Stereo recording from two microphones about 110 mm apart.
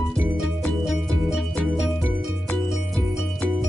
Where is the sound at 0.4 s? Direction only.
5° right (ahead or behind).